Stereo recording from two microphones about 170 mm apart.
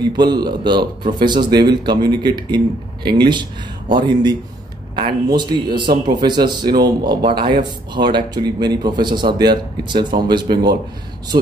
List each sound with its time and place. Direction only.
0.1 s speech: 25° right (ahead or behind)